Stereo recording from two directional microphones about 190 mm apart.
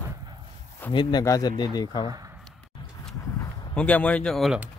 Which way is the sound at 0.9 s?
20° left (ahead or behind).